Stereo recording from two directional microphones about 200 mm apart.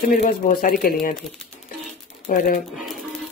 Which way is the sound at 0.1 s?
45° left (ahead or behind).